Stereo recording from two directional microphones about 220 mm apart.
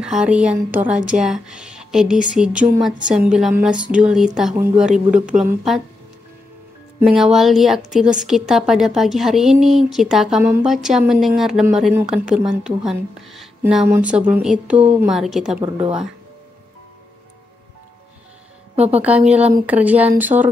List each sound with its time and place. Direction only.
0.0 s a woman's voice: 5° right (ahead or behind)
7.0 s a woman's voice: centre (ahead or behind)
18.9 s speech: 5° right (ahead or behind)